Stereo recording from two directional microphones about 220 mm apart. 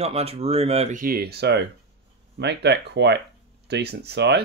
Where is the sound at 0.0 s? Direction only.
30° right (ahead or behind).